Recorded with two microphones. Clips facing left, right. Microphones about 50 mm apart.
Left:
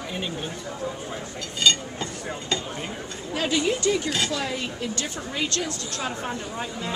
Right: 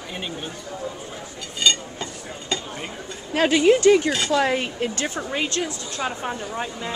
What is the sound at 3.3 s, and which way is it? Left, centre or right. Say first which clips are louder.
Speech: right 8 dB; right.